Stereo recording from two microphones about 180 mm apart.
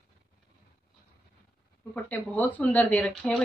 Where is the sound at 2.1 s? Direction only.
10° left (ahead or behind).